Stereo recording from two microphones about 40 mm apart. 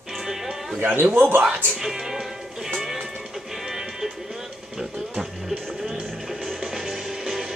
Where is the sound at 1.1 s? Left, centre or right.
Right.